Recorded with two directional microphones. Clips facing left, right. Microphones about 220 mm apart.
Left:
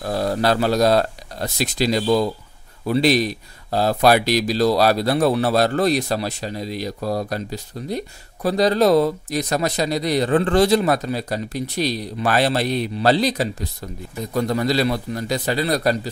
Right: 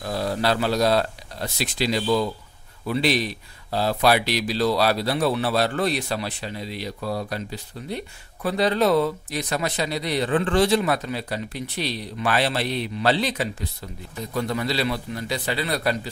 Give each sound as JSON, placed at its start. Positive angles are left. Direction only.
{"t": 0.0, "sound": "speech", "side_deg": 45}